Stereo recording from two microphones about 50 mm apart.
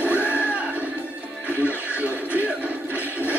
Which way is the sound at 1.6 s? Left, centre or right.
Right.